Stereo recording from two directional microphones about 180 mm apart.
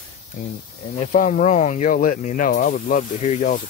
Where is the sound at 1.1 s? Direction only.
45° left (ahead or behind).